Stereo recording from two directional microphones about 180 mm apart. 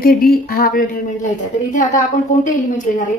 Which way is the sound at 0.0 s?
55° left (ahead or behind).